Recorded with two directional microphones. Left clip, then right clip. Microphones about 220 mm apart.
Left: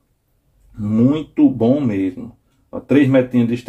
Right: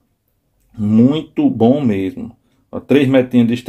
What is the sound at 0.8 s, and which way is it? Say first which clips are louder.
Speech: right 3 dB; 40° right (ahead or behind).